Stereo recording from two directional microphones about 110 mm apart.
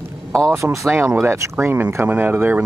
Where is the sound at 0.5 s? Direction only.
20° right (ahead or behind).